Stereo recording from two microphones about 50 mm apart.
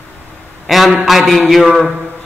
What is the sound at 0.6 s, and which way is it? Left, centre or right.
A man's voice, centre.